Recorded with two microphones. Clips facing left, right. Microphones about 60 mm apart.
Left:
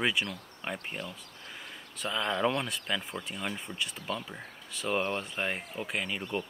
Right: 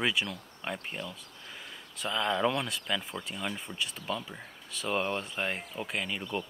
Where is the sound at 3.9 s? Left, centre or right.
Left.